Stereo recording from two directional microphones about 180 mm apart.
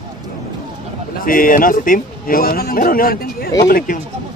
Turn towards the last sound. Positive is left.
turn(degrees=50)  # may be behind; listen again after turning